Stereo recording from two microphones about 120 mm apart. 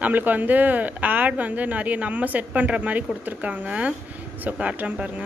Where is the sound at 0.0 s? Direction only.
15° right (ahead or behind).